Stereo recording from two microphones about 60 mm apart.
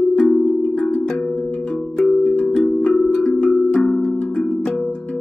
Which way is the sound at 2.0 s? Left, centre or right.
Centre.